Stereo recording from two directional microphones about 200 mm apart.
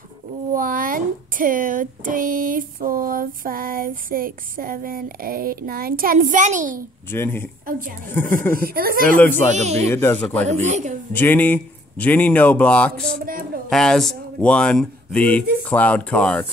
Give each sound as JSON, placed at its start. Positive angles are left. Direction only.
{"t": 0.5, "sound": "speech", "side_deg": -45}
{"t": 7.1, "sound": "speech", "side_deg": 10}
{"t": 8.6, "sound": "speech", "side_deg": -45}
{"t": 9.5, "sound": "speech", "side_deg": -35}
{"t": 9.8, "sound": "speech", "side_deg": 10}
{"t": 10.4, "sound": "speech", "side_deg": -35}
{"t": 11.1, "sound": "speech", "side_deg": 10}
{"t": 13.2, "sound": "speech", "side_deg": -45}
{"t": 13.7, "sound": "speech", "side_deg": 0}